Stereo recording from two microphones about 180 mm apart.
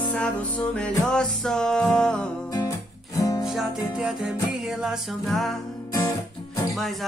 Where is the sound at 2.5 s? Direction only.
20° left (ahead or behind).